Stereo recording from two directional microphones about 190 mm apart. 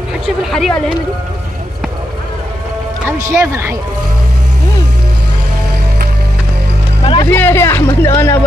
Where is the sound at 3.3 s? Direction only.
15° right (ahead or behind).